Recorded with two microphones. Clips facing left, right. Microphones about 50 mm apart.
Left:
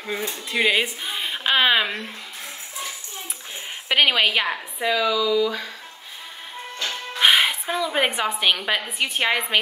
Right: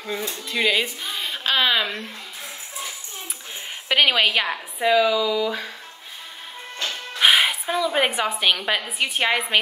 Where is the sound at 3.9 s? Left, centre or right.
Centre.